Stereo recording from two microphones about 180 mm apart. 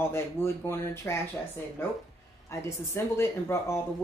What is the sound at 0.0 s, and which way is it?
Speech, 15° left (ahead or behind).